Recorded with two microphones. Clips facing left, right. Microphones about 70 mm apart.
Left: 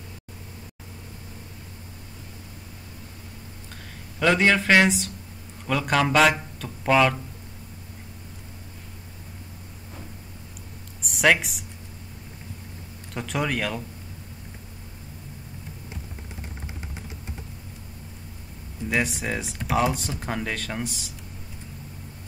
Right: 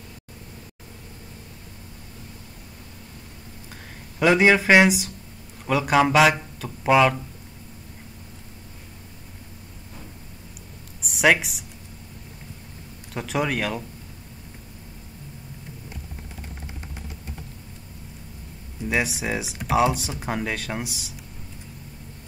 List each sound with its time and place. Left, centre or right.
4.2 s speech: centre
11.0 s a sound: centre
13.1 s speech: centre
18.9 s speech: centre